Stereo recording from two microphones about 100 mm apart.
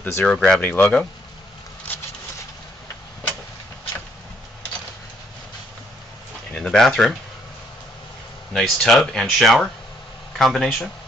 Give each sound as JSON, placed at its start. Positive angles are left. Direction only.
{"t": 0.0, "sound": "speech", "side_deg": 20}
{"t": 0.3, "sound": "speech", "side_deg": 5}
{"t": 0.6, "sound": "speech", "side_deg": 15}
{"t": 6.5, "sound": "speech", "side_deg": 5}
{"t": 8.5, "sound": "speech", "side_deg": 5}